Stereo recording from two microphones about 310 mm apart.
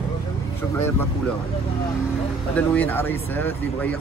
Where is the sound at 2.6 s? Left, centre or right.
Centre.